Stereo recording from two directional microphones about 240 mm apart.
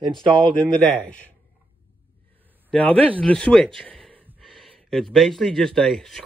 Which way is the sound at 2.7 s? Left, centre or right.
Centre.